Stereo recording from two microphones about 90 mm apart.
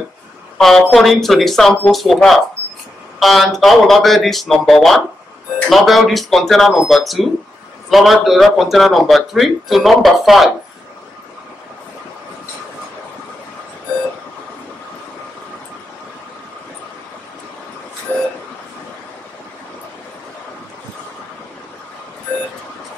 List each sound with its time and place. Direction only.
0.6 s a woman's voice: 5° left (ahead or behind)
18.1 s vehicle: 25° left (ahead or behind)